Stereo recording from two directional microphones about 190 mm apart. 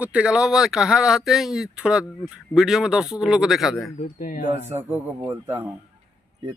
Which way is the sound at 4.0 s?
40° left (ahead or behind).